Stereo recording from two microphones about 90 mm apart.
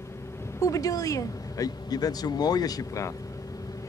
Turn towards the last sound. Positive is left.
turn(degrees=40)  # may be behind; listen again after turning